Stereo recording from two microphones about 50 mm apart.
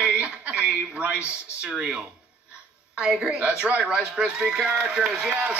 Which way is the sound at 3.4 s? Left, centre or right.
Right.